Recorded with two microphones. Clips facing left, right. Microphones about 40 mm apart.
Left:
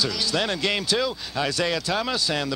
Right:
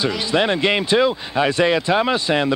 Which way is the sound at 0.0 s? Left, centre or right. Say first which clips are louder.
Right 6 dB; right.